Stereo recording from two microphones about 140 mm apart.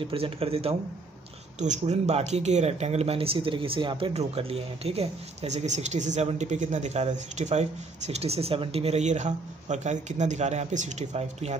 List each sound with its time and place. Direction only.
0.0 s speech: 40° right (ahead or behind)
1.6 s speech: 60° right (ahead or behind)